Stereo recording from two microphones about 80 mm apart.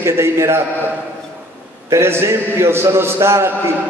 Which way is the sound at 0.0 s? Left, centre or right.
Right.